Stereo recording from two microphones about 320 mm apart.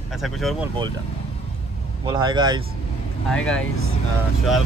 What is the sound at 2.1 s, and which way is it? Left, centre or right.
Speech, centre.